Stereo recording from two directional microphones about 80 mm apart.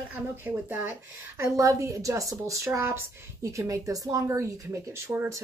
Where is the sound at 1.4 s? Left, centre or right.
Right.